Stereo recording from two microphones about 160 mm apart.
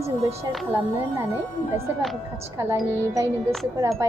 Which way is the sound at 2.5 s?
20° right (ahead or behind).